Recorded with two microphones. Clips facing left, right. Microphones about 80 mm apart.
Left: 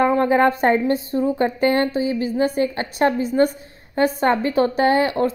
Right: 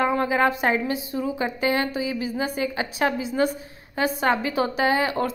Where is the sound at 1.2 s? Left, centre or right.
Left.